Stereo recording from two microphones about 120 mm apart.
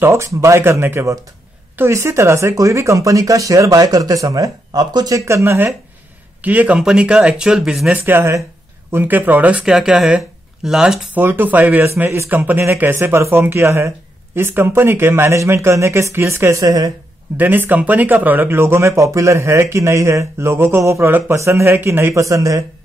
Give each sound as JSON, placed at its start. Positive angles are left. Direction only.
{"t": 0.0, "sound": "speech", "side_deg": -20}
{"t": 8.0, "sound": "speech", "side_deg": -20}
{"t": 11.1, "sound": "speech", "side_deg": -15}
{"t": 17.4, "sound": "speech", "side_deg": -15}